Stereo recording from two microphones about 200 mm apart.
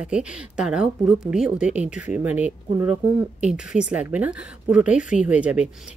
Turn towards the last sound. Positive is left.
turn(degrees=-5)  # may be behind; listen again after turning